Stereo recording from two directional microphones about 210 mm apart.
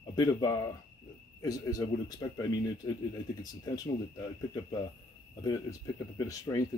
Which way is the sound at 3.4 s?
20° left (ahead or behind).